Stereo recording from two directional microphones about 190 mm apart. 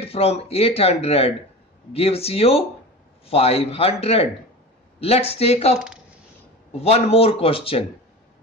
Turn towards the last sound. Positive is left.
turn(degrees=30)  # may be behind; listen again after turning